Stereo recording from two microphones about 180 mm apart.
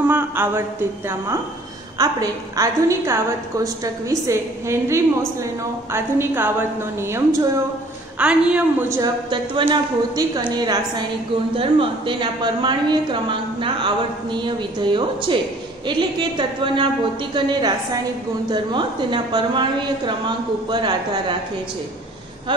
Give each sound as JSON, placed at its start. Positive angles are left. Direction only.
{"t": 0.0, "sound": "a woman's voice", "side_deg": -10}
{"t": 9.3, "sound": "a woman's voice", "side_deg": -25}
{"t": 18.5, "sound": "a woman's voice", "side_deg": -25}